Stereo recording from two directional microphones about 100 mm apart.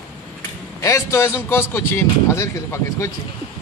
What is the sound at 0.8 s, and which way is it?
Speech, 30° left (ahead or behind).